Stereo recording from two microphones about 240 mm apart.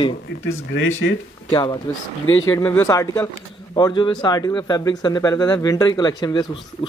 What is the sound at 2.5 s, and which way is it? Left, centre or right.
Speech, centre.